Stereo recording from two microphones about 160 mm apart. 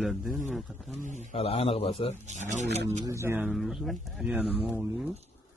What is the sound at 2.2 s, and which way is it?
Speech, 50° right (ahead or behind).